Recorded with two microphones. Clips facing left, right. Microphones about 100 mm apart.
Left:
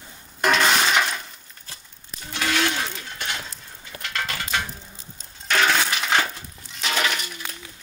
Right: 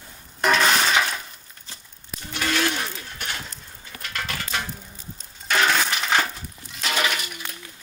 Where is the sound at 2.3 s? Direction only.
20° left (ahead or behind).